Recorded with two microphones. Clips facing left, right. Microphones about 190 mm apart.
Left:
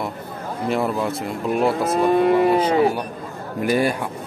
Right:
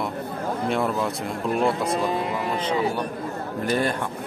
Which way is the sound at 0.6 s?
Centre (ahead or behind).